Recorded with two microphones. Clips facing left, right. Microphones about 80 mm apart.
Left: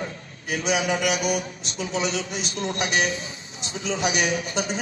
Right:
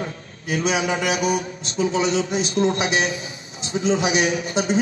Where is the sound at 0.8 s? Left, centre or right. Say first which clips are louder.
Right 2 dB; right.